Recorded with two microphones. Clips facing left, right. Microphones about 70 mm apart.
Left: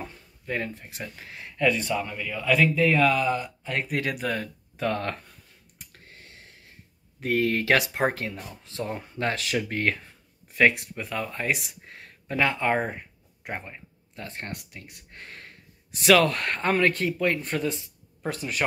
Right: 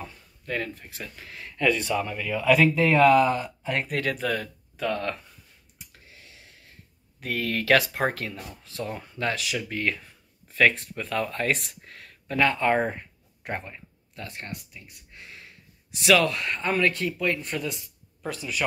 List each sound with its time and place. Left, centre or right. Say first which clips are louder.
0.5 s speech: even; left
1.6 s speech: even; centre
3.1 s speech: right 5 dB; centre
3.9 s speech: even; centre
4.8 s speech: even; left
5.8 s clicking: left 1 dB; left
7.2 s speech: left 4 dB; left
9.9 s speech: even; left; by 11.7 s centre
11.8 s a sound: left 1 dB; left
12.7 s speech: right 2 dB; centre
13.7 s a sound: even; left
14.5 s speech: left 1 dB; left